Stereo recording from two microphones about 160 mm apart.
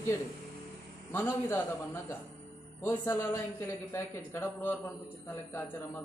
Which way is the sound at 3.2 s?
15° left (ahead or behind).